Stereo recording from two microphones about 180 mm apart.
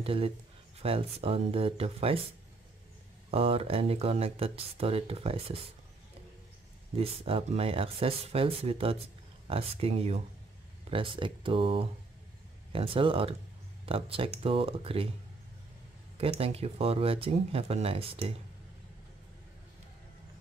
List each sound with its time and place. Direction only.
0.0 s speech: 30° right (ahead or behind)
3.3 s speech: 30° right (ahead or behind)
7.0 s speech: 30° right (ahead or behind)
16.2 s speech: 30° right (ahead or behind)